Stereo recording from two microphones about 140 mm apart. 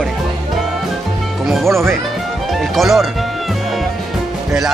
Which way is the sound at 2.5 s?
Centre (ahead or behind).